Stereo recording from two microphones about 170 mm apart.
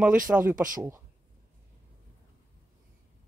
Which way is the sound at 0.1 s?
55° right (ahead or behind).